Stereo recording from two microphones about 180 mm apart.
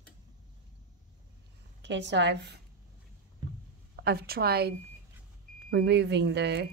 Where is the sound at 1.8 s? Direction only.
75° right (ahead or behind).